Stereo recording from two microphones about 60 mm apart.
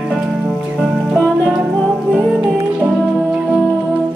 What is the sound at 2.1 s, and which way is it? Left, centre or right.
Music, right.